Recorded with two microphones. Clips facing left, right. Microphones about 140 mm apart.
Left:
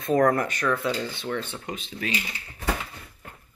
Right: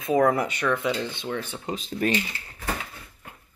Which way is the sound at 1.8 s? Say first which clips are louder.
Right 11 dB; 45° right (ahead or behind).